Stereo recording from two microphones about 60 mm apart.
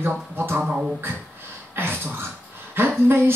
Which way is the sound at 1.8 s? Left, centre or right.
Right.